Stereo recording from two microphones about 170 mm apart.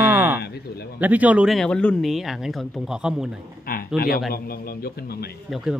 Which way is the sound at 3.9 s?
65° left (ahead or behind).